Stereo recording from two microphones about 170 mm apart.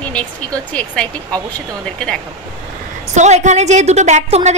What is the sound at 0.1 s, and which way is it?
Speech, 5° left (ahead or behind).